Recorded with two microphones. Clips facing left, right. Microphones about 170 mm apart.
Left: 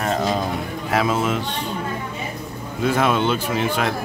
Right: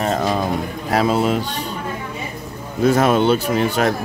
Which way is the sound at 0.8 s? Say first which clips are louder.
Right 3 dB; 35° right (ahead or behind).